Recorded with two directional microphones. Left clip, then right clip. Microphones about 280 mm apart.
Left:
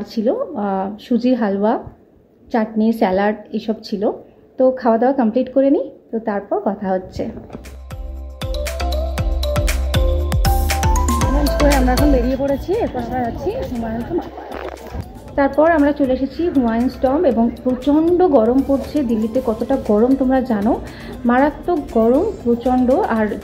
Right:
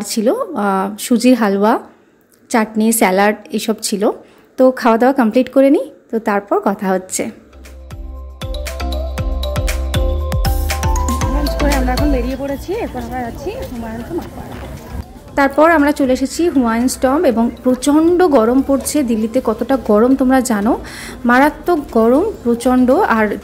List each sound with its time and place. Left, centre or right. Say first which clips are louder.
0.0 s a woman's voice: right 3 dB; right
8.6 s music: left 1 dB; centre
15.3 s a woman's voice: right 3 dB; right